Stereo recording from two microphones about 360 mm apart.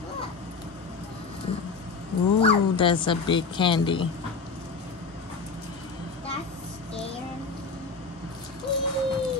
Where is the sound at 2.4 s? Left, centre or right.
Centre.